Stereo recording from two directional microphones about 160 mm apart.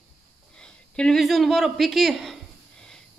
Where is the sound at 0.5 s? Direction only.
5° left (ahead or behind).